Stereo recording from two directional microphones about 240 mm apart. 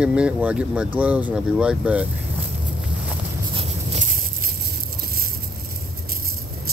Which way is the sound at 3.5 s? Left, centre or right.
Right.